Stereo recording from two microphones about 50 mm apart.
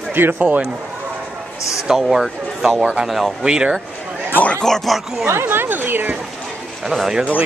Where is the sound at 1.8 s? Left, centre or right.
Centre.